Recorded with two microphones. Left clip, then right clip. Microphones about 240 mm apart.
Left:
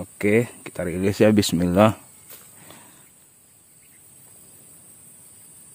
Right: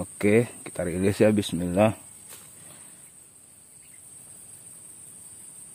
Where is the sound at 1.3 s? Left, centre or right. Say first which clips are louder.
Left 6 dB; left.